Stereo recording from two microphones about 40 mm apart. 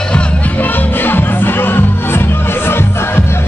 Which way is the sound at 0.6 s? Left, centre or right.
Left.